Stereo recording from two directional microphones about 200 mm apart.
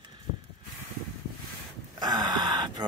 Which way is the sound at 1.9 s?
20° right (ahead or behind).